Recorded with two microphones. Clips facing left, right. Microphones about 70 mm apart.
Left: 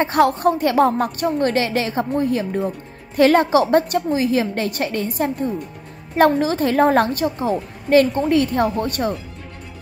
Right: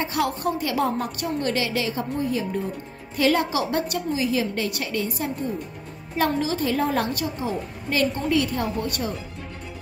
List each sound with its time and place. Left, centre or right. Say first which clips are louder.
0.0 s a woman's voice: left 9 dB; left